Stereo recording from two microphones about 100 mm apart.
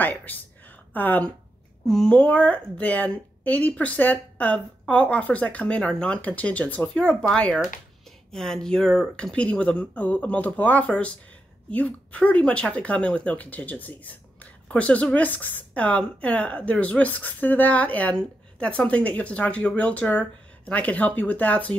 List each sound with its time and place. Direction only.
0.0 s speech: 15° left (ahead or behind)
1.9 s speech: 5° left (ahead or behind)